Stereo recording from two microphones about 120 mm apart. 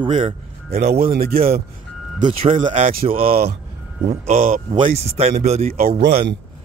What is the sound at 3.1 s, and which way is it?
Speech, 55° right (ahead or behind).